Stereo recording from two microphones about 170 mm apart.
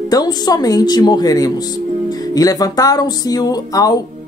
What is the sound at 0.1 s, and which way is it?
Speech, 25° left (ahead or behind).